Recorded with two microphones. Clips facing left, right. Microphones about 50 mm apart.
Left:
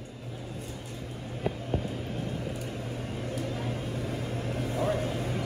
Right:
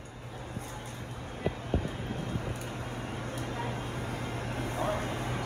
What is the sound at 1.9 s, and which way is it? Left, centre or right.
Vehicle, right.